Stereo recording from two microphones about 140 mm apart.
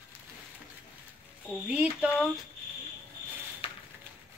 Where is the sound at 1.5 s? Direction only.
5° right (ahead or behind).